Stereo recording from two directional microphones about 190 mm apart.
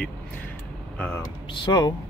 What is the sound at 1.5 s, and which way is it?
Speech, 25° left (ahead or behind).